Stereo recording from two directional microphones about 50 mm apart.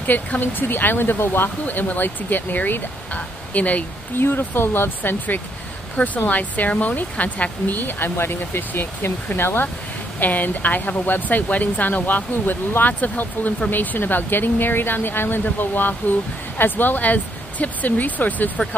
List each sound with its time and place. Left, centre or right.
0.0 s speech: left
4.2 s speech: left
5.9 s speech: left
10.2 s speech: left